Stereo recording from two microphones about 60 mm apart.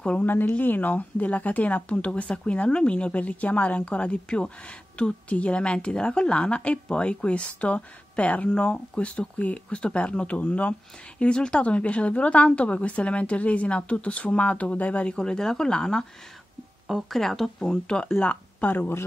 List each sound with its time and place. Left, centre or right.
0.2 s speech: left
15.1 s speech: centre
16.8 s speech: centre; by 18.9 s left